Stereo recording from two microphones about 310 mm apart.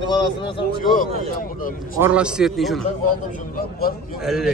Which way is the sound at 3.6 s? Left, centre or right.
Left.